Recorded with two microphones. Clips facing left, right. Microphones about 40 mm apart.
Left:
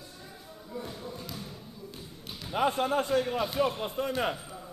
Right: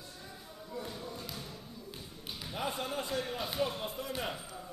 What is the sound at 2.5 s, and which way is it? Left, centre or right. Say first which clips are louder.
Speech: left 10 dB; left.